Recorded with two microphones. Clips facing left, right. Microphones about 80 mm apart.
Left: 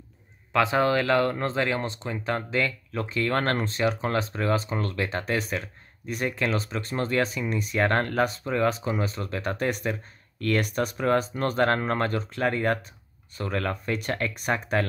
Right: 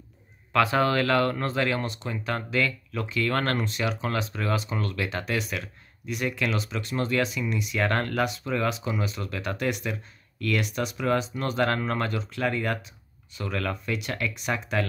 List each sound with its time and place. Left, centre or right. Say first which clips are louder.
0.5 s speech: even; centre; by 14.9 s left